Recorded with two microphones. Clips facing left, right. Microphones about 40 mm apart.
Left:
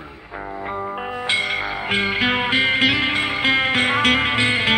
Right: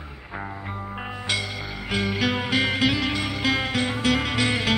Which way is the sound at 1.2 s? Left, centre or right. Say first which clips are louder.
Left 6 dB; left.